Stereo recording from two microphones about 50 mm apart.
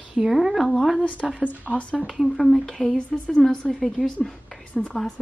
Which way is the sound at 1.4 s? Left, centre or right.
Left.